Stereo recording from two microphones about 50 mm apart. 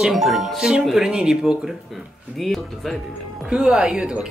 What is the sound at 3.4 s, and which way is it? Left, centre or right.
Speech, centre.